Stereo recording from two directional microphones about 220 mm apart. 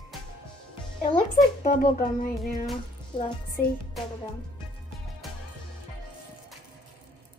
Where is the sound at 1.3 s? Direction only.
40° left (ahead or behind).